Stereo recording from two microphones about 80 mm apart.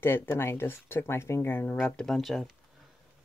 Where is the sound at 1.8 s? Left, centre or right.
Centre.